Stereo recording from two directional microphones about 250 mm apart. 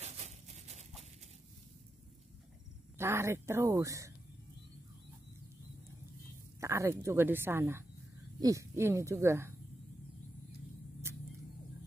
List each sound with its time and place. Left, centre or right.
0.0 s a sound: right
3.0 s a woman's voice: centre
6.6 s a woman's voice: centre
11.1 s vehicle: centre